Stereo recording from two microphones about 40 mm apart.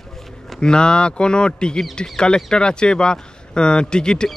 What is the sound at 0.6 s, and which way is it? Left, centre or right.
Speech, left.